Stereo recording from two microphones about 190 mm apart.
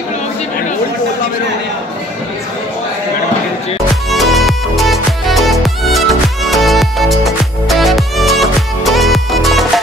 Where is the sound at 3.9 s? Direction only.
Centre (ahead or behind).